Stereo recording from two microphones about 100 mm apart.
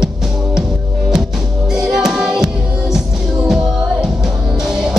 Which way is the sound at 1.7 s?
5° right (ahead or behind).